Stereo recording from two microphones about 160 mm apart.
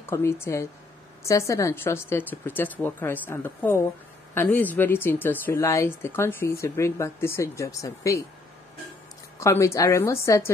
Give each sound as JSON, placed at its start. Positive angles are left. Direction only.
{"t": 0.0, "sound": "speech", "side_deg": 15}
{"t": 9.4, "sound": "speech", "side_deg": 20}